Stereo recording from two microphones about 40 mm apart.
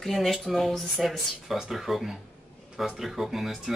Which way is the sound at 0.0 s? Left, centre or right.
Centre.